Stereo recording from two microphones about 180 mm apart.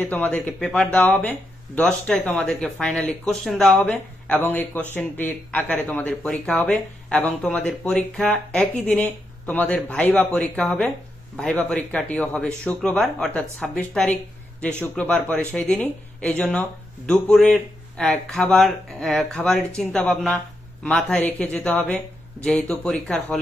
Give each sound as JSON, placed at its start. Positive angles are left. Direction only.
{"t": 0.0, "sound": "speech", "side_deg": 10}